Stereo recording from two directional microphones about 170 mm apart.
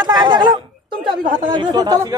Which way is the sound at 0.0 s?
25° right (ahead or behind).